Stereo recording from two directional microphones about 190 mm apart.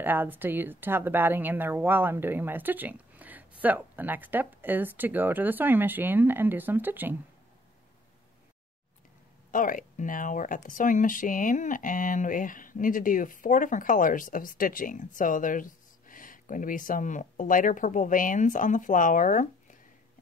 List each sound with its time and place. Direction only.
0.0 s a woman's voice: 10° right (ahead or behind)
9.5 s speech: 45° left (ahead or behind)